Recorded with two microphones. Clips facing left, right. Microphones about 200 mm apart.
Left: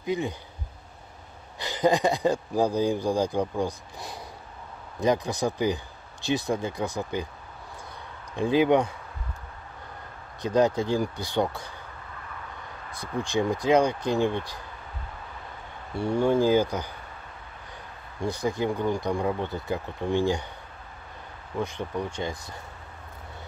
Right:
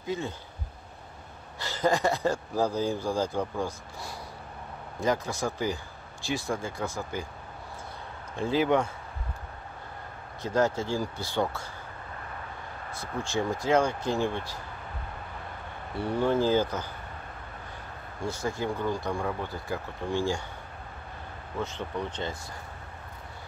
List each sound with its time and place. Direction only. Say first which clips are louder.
0.0 s speech: left 4 dB; 15° left (ahead or behind)
1.6 s speech: left 3 dB; 15° left (ahead or behind)
8.4 s speech: left 4 dB; 15° left (ahead or behind)
10.4 s speech: left 4 dB; 15° left (ahead or behind)
12.9 s speech: left 4 dB; 15° left (ahead or behind)
16.0 s speech: left 3 dB; 15° left (ahead or behind)
18.2 s speech: left 4 dB; 15° left (ahead or behind)
21.5 s speech: left 3 dB; 15° left (ahead or behind)